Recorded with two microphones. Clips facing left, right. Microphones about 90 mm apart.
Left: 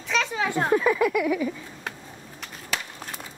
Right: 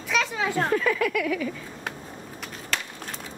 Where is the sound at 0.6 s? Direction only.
15° left (ahead or behind).